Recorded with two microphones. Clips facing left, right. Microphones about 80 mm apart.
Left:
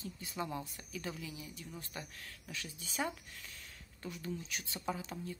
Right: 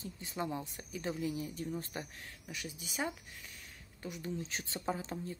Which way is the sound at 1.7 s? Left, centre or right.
Right.